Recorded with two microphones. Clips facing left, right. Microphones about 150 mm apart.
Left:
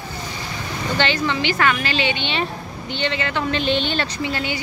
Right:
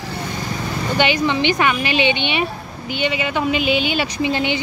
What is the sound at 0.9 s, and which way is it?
A woman's voice, 15° right (ahead or behind).